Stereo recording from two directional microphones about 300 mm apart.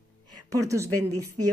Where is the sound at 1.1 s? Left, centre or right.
Right.